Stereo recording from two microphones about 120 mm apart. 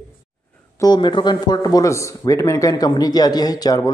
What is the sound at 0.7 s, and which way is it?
Speech, 35° left (ahead or behind).